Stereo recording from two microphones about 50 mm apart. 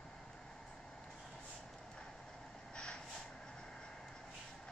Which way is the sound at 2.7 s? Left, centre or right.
Centre.